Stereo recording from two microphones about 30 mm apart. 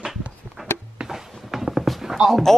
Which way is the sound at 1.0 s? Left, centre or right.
Right.